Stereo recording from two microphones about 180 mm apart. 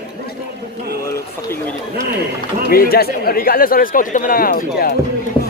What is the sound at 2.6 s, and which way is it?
Speech, 55° left (ahead or behind).